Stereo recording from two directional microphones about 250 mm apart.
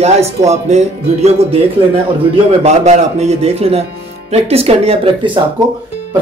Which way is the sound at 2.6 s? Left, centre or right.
Right.